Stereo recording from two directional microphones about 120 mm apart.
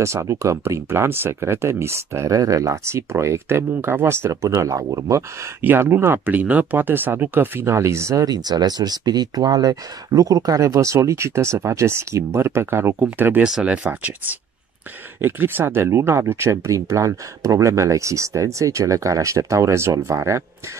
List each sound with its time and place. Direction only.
0.0 s speech: 25° right (ahead or behind)
5.6 s speech: 15° right (ahead or behind)